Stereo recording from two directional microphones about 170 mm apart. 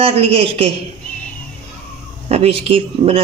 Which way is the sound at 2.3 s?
35° right (ahead or behind).